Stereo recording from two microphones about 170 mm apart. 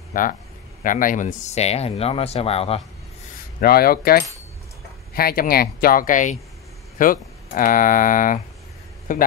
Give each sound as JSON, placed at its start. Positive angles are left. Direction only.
{"t": 0.1, "sound": "speech", "side_deg": 55}
{"t": 3.6, "sound": "a man's voice", "side_deg": 60}